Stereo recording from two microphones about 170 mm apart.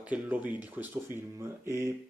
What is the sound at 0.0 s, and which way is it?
Speech, 10° right (ahead or behind).